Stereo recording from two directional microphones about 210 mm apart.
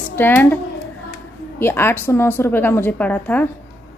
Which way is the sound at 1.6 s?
10° left (ahead or behind).